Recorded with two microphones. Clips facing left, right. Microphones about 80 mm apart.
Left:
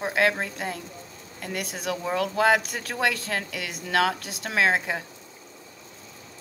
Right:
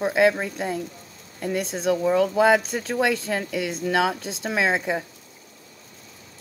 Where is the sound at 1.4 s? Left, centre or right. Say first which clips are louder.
Right 7 dB; right.